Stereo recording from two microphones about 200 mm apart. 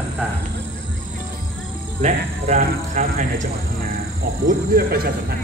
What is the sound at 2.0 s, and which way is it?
Speech, 35° right (ahead or behind).